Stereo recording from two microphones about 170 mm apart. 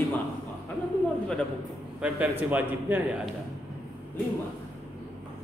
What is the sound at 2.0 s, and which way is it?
A man's voice, 10° right (ahead or behind).